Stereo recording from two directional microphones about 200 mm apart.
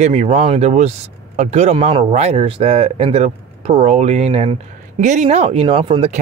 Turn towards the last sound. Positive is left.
turn(degrees=-30)  # may be behind; listen again after turning